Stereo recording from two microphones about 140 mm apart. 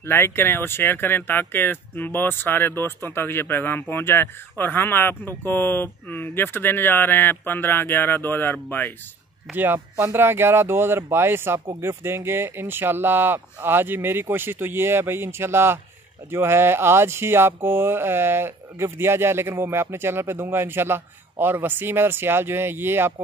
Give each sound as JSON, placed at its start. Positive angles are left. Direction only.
{"t": 0.0, "sound": "speech", "side_deg": 15}
{"t": 9.5, "sound": "speech", "side_deg": -15}